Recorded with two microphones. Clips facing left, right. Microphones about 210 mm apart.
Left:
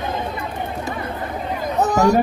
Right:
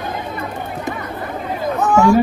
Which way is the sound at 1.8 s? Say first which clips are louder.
Right 3 dB; 40° left (ahead or behind).